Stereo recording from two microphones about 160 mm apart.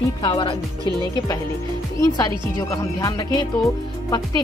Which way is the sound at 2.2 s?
20° left (ahead or behind).